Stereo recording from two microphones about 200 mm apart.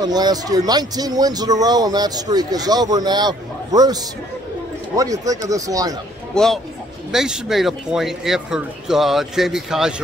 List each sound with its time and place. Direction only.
0.0 s speech: 20° right (ahead or behind)
6.3 s speech: centre (ahead or behind)